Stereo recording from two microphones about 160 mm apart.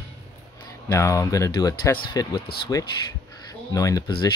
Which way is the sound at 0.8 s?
20° left (ahead or behind).